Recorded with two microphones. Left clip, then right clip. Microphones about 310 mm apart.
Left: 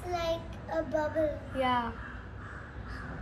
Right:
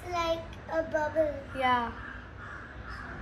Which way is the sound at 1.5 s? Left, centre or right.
Centre.